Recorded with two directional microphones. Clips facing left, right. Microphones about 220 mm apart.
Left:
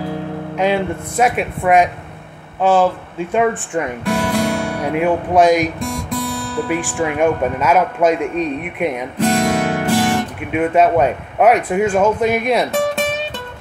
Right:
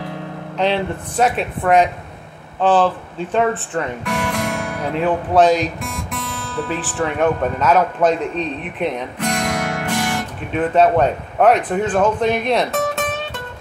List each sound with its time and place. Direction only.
0.6 s a man's voice: 10° left (ahead or behind)
4.0 s music: 30° left (ahead or behind)
4.9 s a man's voice: 10° left (ahead or behind)
6.7 s a man's voice: 10° left (ahead or behind)
9.2 s music: 30° left (ahead or behind)
10.5 s a man's voice: 10° left (ahead or behind)